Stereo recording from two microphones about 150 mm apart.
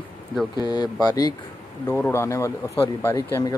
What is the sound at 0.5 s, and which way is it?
Speech, 30° left (ahead or behind).